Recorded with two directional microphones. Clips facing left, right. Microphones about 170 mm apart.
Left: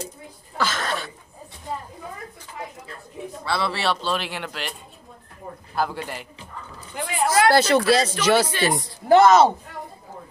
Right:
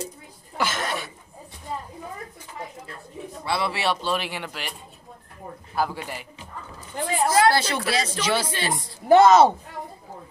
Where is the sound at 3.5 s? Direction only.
15° right (ahead or behind).